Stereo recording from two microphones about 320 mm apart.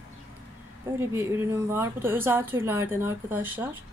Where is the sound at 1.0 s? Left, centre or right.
Centre.